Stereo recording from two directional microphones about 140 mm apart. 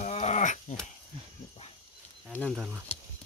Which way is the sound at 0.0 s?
55° left (ahead or behind).